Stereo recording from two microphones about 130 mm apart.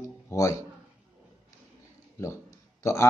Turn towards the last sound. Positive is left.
turn(degrees=20)  # may be behind; listen again after turning